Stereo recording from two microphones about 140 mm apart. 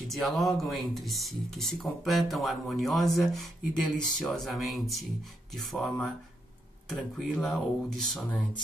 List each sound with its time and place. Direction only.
0.2 s speech: centre (ahead or behind)